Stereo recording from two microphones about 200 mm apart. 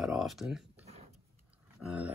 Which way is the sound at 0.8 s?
30° right (ahead or behind).